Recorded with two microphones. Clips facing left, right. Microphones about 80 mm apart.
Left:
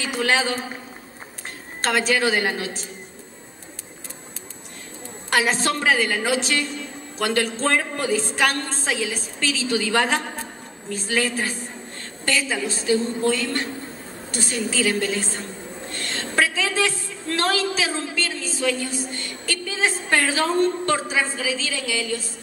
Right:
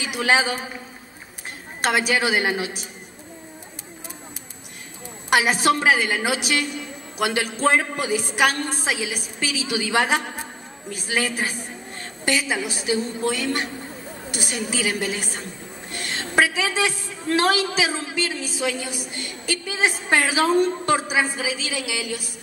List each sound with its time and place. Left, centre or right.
0.0 s a woman's voice: centre
1.8 s a woman's voice: centre
5.3 s a woman's voice: centre